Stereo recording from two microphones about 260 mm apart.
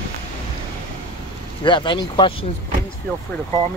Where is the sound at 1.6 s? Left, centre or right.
Centre.